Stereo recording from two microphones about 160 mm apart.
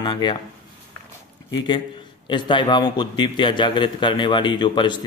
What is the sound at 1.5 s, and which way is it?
Speech, 30° left (ahead or behind).